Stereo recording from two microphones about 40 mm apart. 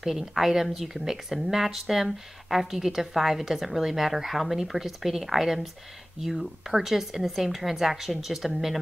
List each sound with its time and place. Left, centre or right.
0.0 s a woman's voice: centre